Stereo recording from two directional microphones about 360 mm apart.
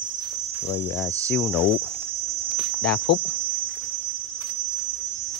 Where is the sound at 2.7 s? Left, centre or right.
Left.